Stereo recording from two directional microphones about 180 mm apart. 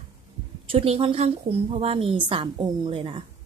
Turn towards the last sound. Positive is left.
turn(degrees=-30)  # may be behind; listen again after turning